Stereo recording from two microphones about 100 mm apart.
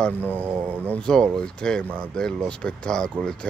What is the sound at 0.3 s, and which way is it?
Speech, 20° right (ahead or behind).